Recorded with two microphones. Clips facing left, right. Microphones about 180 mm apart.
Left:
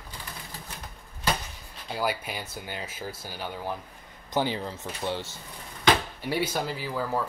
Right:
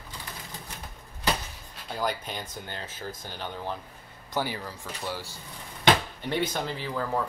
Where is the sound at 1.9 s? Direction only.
10° left (ahead or behind).